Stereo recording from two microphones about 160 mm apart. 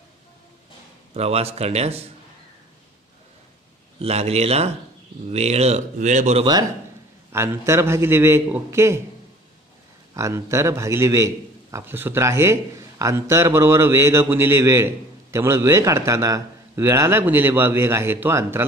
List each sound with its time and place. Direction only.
1.1 s speech: 40° right (ahead or behind)
4.0 s speech: 40° right (ahead or behind)
7.3 s a man's voice: 15° right (ahead or behind)
10.1 s a man's voice: 20° right (ahead or behind)